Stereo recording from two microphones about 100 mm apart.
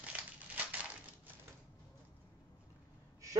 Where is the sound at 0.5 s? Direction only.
15° right (ahead or behind).